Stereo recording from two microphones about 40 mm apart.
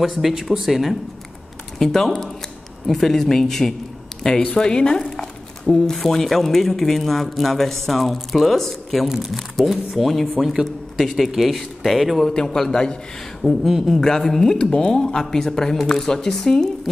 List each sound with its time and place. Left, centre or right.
0.1 s speech: centre
1.8 s speech: centre
5.2 s speech: centre
10.4 s a man's voice: centre
11.0 s speech: centre
13.7 s speech: centre
14.0 s speech: centre